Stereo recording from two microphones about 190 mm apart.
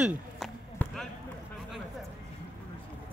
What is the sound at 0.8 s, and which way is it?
Basketball bounce, 10° left (ahead or behind).